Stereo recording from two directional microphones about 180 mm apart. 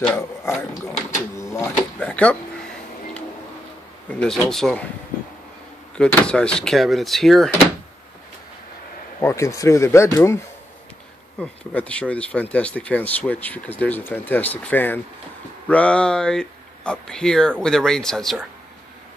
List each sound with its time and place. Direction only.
0.1 s a sound: 15° left (ahead or behind)
1.3 s printer: 15° left (ahead or behind)
4.1 s speech: 5° left (ahead or behind)
5.9 s speech: 5° left (ahead or behind)
9.2 s speech: 15° left (ahead or behind)